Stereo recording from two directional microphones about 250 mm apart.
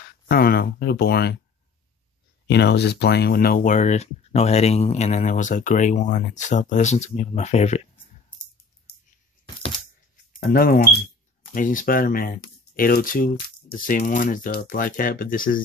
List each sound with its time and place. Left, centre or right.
0.3 s speech: left
2.4 s speech: left
8.9 s scissors: left
10.3 s speech: left